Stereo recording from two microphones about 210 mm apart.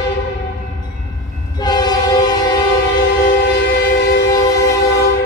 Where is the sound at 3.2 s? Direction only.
50° left (ahead or behind).